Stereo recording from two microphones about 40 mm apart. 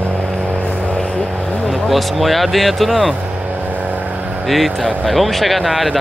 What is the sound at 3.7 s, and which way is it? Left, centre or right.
Vehicle, right.